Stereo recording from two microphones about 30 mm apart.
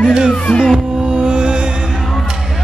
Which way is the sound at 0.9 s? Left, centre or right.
Right.